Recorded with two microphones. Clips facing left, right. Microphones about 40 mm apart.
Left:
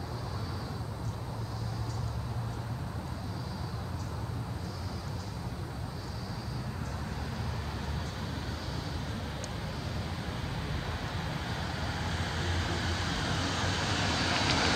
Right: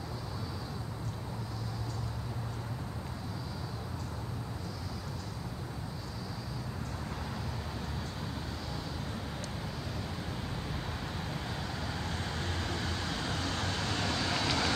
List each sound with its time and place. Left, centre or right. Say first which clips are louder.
11.9 s vehicle: left 2 dB; left
13.3 s vehicle: left 2 dB; left